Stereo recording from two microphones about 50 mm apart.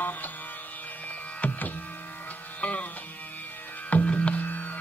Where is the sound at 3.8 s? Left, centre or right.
Left.